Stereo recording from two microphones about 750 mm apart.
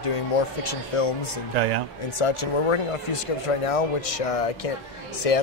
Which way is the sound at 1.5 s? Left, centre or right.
Right.